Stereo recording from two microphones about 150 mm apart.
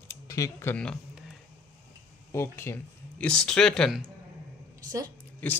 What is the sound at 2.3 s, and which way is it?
Speech, 15° left (ahead or behind).